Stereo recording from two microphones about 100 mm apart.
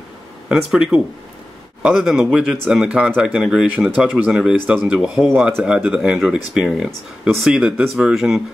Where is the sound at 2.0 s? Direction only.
Centre (ahead or behind).